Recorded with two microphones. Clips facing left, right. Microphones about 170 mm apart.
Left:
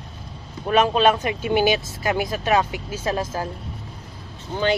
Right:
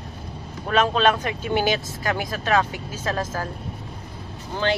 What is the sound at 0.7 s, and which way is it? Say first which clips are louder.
Speech: left 2 dB; 15° left (ahead or behind).